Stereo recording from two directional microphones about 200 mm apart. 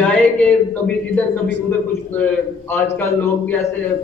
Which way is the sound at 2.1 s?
10° left (ahead or behind).